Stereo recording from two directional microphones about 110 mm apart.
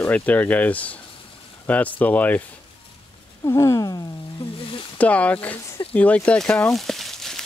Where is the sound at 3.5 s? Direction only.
25° left (ahead or behind).